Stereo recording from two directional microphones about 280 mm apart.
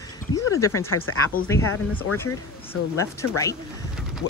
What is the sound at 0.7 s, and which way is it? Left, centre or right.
Speech, left.